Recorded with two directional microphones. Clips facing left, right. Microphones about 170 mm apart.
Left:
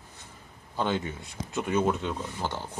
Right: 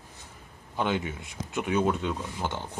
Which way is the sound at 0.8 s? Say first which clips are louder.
Even; 15° right (ahead or behind).